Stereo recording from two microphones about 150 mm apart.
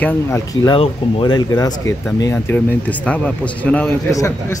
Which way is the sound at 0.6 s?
35° left (ahead or behind).